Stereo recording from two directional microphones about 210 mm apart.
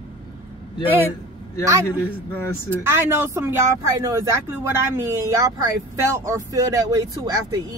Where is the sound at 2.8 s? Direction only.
10° right (ahead or behind).